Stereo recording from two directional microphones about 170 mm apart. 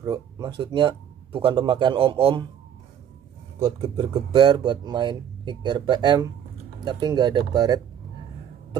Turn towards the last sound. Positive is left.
turn(degrees=-25)  # may be behind; listen again after turning